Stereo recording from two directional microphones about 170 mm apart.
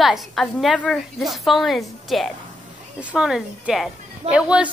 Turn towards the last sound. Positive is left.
turn(degrees=-5)  # may be behind; listen again after turning